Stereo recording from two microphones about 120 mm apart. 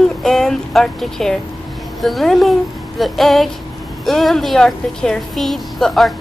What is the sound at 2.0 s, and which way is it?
A woman's voice, centre (ahead or behind).